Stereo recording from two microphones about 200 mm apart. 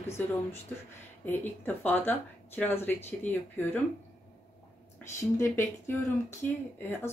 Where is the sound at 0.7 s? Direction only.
10° left (ahead or behind).